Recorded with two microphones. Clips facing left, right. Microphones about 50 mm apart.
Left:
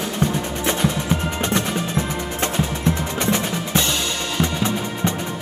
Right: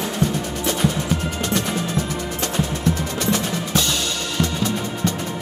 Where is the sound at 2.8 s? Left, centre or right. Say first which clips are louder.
Left 1 dB; left.